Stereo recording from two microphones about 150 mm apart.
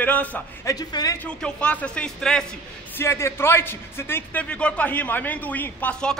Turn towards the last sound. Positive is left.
turn(degrees=10)  # may be behind; listen again after turning